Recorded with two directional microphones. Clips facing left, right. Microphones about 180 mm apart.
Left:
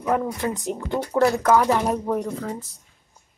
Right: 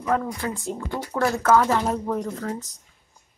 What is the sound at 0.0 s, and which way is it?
Speech, 15° left (ahead or behind).